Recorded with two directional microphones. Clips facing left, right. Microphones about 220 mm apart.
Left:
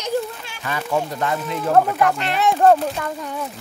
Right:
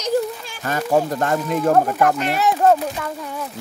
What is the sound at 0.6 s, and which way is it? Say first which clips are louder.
Speech: right 4 dB; 45° right (ahead or behind).